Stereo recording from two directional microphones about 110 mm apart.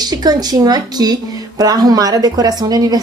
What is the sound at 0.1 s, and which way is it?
Speech, 35° right (ahead or behind).